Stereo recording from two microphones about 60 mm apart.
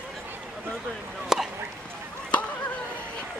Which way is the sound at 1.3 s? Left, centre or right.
Centre.